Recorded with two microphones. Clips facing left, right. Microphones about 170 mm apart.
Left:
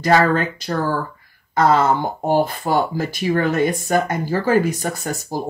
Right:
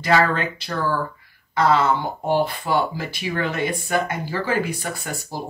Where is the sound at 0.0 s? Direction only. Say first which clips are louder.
Left 3 dB; 45° left (ahead or behind).